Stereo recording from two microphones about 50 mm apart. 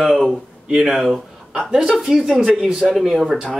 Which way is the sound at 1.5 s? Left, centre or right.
Centre.